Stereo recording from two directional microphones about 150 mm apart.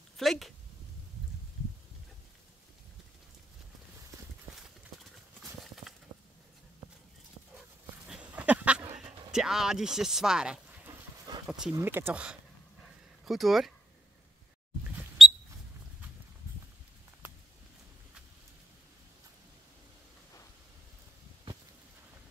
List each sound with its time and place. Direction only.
0.2 s speech: centre (ahead or behind)
8.1 s goat: 10° right (ahead or behind)
8.9 s speech: 5° right (ahead or behind)
10.9 s a sound: 25° right (ahead or behind)
11.7 s speech: 15° right (ahead or behind)
15.2 s a sound: centre (ahead or behind)